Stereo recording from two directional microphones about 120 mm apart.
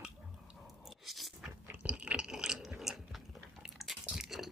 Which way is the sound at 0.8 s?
Centre (ahead or behind).